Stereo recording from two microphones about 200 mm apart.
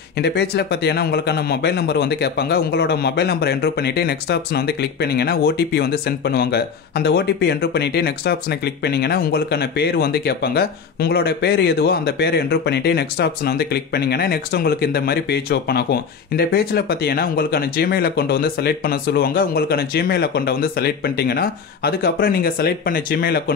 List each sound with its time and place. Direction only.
0.2 s speech: 55° left (ahead or behind)